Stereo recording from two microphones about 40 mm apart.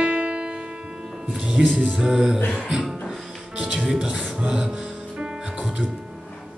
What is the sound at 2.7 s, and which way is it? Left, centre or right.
Music, centre.